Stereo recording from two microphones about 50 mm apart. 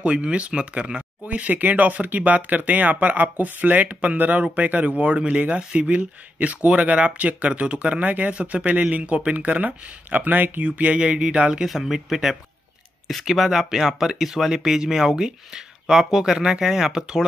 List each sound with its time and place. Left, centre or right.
0.0 s speech: right
1.2 s speech: right
11.0 s speech: right
11.6 s speech: centre